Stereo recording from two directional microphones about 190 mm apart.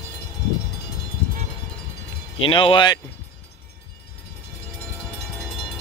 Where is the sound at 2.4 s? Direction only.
25° left (ahead or behind).